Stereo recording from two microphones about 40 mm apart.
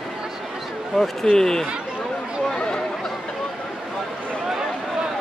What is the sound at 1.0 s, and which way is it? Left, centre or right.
Speech, centre.